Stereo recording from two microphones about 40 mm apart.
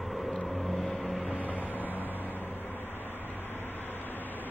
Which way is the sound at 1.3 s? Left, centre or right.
Right.